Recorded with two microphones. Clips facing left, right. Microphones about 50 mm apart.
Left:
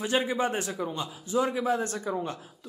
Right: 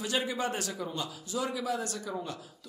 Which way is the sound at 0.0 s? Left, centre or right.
Left.